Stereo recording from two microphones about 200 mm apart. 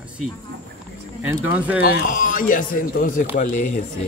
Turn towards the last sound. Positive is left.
turn(degrees=40)  # may be behind; listen again after turning